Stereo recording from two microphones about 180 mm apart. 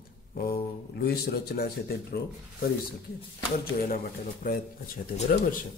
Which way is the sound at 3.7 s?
50° left (ahead or behind).